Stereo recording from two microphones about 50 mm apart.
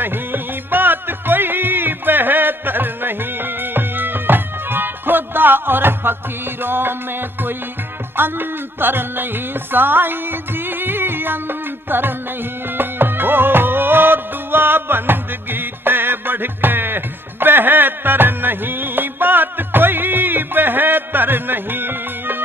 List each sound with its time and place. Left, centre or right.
0.0 s music: right